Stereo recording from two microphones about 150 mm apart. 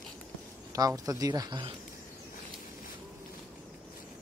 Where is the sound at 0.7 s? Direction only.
25° right (ahead or behind).